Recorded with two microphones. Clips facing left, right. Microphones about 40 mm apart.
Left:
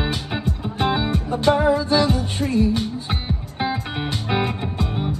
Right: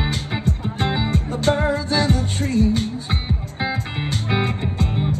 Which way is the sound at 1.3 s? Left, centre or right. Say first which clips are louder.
Left 3 dB; left.